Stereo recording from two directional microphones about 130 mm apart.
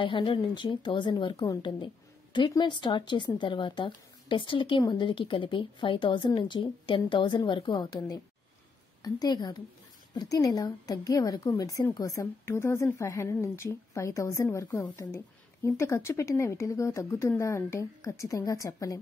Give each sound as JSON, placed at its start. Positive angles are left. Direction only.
{"t": 0.0, "sound": "a woman's voice", "side_deg": 40}